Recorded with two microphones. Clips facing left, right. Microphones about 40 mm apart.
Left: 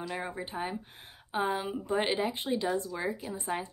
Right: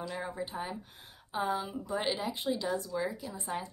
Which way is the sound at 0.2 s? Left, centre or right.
Left.